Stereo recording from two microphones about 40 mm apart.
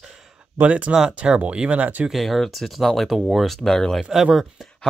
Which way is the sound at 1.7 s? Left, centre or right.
Right.